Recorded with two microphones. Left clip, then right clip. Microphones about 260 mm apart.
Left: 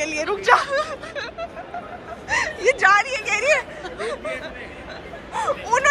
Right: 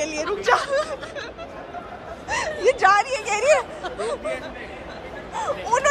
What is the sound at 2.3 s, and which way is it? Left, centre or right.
Speech, centre.